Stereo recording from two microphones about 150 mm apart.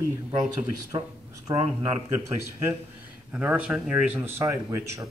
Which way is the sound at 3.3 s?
10° right (ahead or behind).